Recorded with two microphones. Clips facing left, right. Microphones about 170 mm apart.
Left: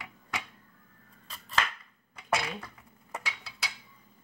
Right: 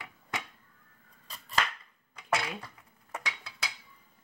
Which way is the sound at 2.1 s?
5° left (ahead or behind).